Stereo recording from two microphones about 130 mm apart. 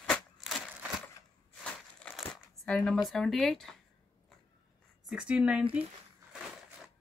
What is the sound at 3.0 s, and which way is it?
Speech, 5° left (ahead or behind).